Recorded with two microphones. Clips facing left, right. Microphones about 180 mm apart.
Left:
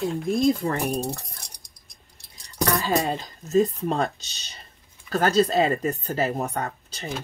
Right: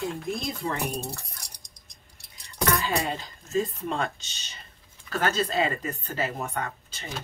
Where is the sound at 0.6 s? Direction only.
50° left (ahead or behind).